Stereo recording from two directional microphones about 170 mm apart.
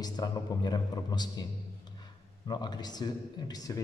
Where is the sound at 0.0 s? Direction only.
25° left (ahead or behind).